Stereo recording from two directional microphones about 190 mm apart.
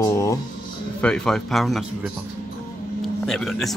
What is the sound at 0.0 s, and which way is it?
Speech, 15° left (ahead or behind).